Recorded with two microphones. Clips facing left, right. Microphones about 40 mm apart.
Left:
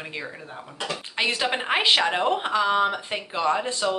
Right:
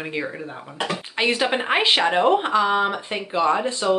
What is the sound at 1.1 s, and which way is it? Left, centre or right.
Speech, centre.